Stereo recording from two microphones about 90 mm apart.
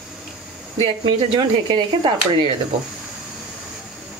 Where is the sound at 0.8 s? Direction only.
60° right (ahead or behind).